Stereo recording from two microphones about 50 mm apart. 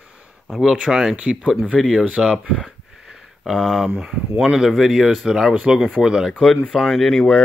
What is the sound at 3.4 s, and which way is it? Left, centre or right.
Speech, centre.